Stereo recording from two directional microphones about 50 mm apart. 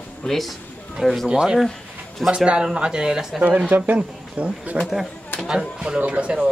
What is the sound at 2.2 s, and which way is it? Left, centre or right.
Speech, centre.